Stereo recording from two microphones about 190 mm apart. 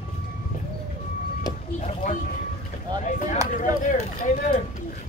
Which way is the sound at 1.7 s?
40° left (ahead or behind).